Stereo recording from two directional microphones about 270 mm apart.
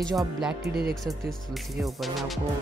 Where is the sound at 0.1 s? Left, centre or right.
Centre.